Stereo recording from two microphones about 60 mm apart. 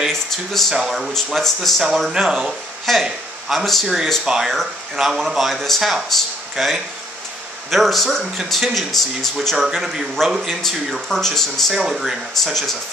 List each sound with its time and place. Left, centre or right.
0.1 s speech: centre
2.0 s a man's voice: centre
9.8 s speech: centre
10.6 s speech: centre